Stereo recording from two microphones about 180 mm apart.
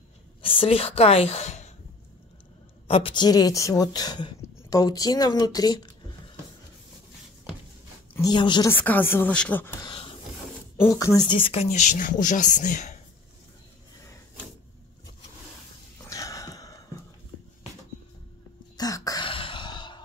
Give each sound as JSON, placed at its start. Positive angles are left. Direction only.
{"t": 0.4, "sound": "speech", "side_deg": 30}
{"t": 2.9, "sound": "speech", "side_deg": 30}
{"t": 8.1, "sound": "speech", "side_deg": 20}
{"t": 8.7, "sound": "speech", "side_deg": 10}
{"t": 9.8, "sound": "a sound", "side_deg": 25}
{"t": 10.8, "sound": "speech", "side_deg": 15}
{"t": 16.0, "sound": "a sound", "side_deg": 15}
{"t": 18.8, "sound": "throat clearing", "side_deg": 20}